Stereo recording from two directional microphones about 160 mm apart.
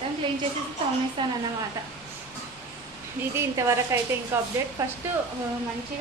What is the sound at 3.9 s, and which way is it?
Speech, 15° right (ahead or behind).